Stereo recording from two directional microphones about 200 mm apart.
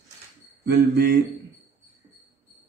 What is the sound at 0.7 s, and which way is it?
Speech, 55° right (ahead or behind).